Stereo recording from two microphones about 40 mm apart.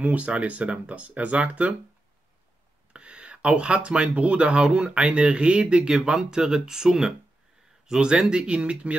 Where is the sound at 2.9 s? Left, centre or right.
Right.